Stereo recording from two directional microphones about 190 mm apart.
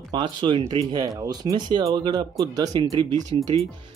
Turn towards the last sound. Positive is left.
turn(degrees=-20)  # may be behind; listen again after turning